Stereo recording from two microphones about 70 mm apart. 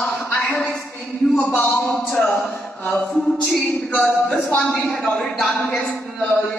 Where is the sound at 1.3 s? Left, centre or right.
Left.